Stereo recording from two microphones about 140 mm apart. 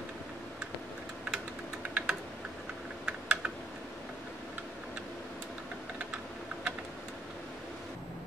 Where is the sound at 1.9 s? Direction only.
5° right (ahead or behind).